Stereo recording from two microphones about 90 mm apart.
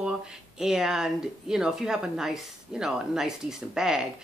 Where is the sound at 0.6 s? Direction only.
5° right (ahead or behind).